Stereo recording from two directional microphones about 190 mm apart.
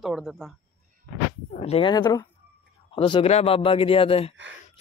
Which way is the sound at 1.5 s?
35° left (ahead or behind).